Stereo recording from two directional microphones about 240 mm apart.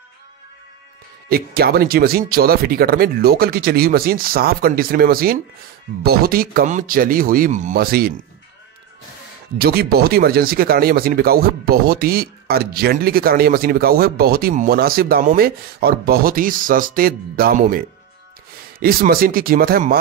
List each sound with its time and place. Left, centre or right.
1.3 s speech: right
9.6 s speech: right